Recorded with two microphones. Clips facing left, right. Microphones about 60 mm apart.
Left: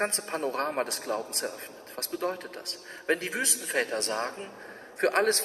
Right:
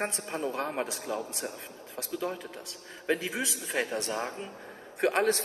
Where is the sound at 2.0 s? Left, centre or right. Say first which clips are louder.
Left 2 dB; left.